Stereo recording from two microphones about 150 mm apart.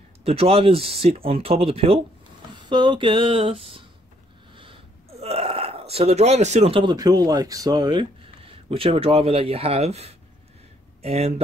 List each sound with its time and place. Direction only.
0.2 s speech: 40° right (ahead or behind)
5.2 s speech: 40° right (ahead or behind)